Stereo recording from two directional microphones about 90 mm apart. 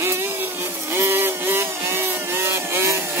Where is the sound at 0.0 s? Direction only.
30° right (ahead or behind).